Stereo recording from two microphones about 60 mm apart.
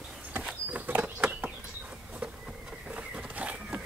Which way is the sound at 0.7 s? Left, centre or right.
Right.